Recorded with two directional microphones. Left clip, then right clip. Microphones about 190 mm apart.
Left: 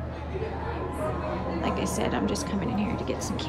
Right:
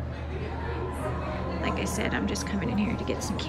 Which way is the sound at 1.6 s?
15° left (ahead or behind).